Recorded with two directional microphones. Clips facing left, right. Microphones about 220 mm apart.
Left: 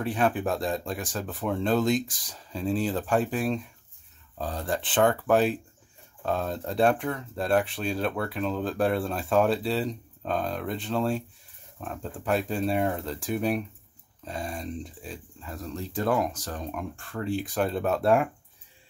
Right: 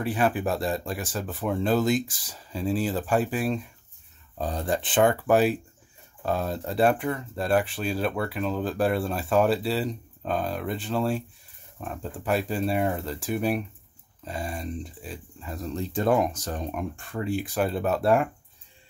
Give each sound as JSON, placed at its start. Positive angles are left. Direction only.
{"t": 0.0, "sound": "speech", "side_deg": -5}
{"t": 4.4, "sound": "speech", "side_deg": -20}
{"t": 15.4, "sound": "speech", "side_deg": -20}